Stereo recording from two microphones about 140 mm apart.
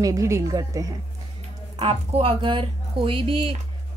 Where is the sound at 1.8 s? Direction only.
40° right (ahead or behind).